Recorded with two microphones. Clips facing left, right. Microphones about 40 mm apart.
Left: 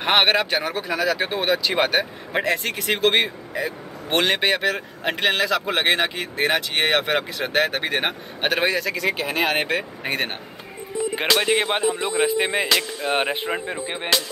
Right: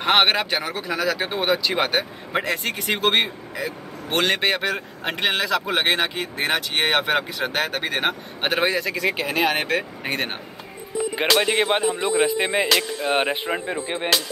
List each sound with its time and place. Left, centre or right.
0.0 s speech: centre
3.5 s speech: centre
7.4 s speech: centre
8.5 s speech: centre
9.4 s speech: centre